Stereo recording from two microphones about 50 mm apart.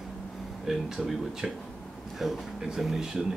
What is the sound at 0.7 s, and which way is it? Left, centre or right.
Speech, centre.